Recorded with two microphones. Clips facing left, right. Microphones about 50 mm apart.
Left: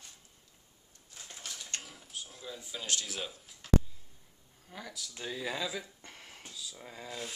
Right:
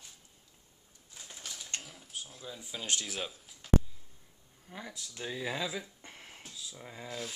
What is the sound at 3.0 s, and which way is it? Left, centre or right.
Speech, centre.